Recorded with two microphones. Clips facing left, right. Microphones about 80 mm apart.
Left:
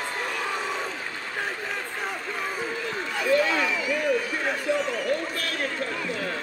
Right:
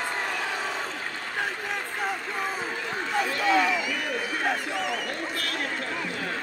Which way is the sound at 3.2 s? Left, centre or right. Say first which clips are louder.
Left 5 dB; right.